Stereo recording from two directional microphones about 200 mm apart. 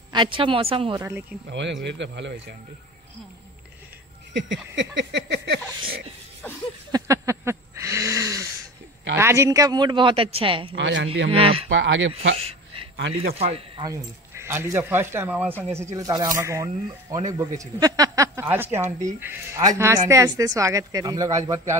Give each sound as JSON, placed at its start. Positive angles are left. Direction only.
{"t": 0.1, "sound": "speech", "side_deg": -25}
{"t": 0.9, "sound": "speech", "side_deg": -10}
{"t": 1.5, "sound": "a sound", "side_deg": -60}
{"t": 4.3, "sound": "a sound", "side_deg": -60}
{"t": 6.4, "sound": "a sound", "side_deg": 10}
{"t": 6.9, "sound": "a sound", "side_deg": -15}
{"t": 9.2, "sound": "speech", "side_deg": -15}
{"t": 10.7, "sound": "speech", "side_deg": -65}
{"t": 11.2, "sound": "speech", "side_deg": -30}
{"t": 11.7, "sound": "speech", "side_deg": -65}
{"t": 13.3, "sound": "speech", "side_deg": -30}
{"t": 14.3, "sound": "speech", "side_deg": -15}